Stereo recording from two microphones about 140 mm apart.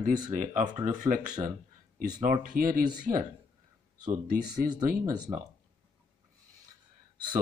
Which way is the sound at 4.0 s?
25° right (ahead or behind).